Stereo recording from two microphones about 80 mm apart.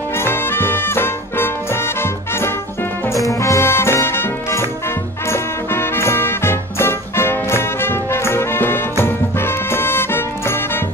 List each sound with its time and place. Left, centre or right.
0.1 s music: left